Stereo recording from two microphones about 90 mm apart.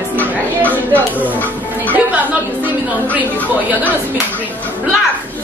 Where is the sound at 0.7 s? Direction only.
20° right (ahead or behind).